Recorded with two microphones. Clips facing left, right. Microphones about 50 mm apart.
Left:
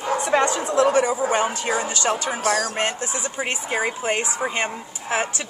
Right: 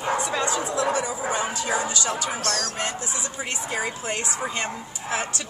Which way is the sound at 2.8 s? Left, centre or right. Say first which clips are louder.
Left 4 dB; left.